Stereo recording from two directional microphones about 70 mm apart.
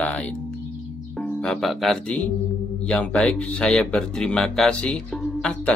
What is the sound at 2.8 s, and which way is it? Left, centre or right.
Speech, centre.